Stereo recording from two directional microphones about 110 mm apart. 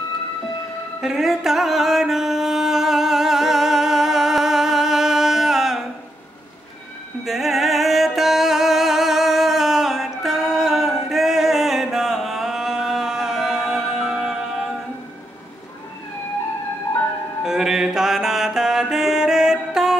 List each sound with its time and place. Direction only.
1.0 s music: 5° right (ahead or behind)
7.2 s music: centre (ahead or behind)
17.4 s mantra: 5° right (ahead or behind)